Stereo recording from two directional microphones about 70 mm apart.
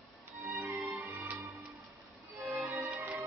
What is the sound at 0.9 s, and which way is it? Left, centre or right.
Music, right.